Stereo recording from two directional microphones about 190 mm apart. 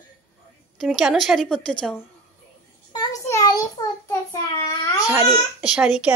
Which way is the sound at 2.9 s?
20° left (ahead or behind).